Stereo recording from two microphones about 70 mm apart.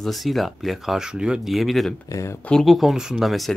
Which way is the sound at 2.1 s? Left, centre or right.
Left.